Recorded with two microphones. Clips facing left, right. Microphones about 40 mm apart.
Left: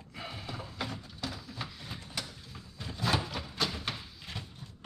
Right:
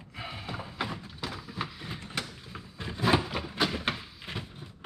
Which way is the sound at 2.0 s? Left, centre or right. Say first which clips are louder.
Right 5 dB; right.